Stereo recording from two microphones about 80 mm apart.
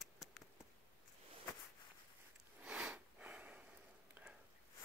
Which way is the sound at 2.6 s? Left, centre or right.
Centre.